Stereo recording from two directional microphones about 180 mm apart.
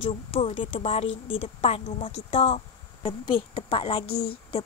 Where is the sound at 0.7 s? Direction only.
35° left (ahead or behind).